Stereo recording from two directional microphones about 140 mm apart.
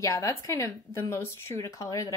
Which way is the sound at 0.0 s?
25° left (ahead or behind).